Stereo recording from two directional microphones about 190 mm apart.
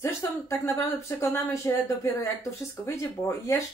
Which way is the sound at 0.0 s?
15° left (ahead or behind).